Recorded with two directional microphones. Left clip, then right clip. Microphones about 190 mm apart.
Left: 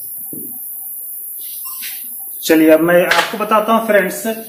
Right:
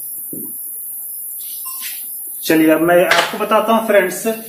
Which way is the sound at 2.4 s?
35° left (ahead or behind).